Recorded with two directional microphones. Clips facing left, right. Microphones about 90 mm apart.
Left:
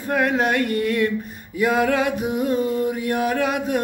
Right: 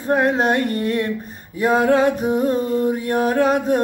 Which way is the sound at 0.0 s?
30° right (ahead or behind).